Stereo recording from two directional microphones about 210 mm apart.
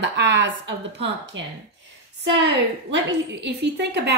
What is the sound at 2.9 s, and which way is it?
A woman's voice, 55° right (ahead or behind).